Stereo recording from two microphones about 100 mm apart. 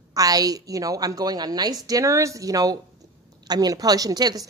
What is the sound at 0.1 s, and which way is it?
A woman's voice, 35° right (ahead or behind).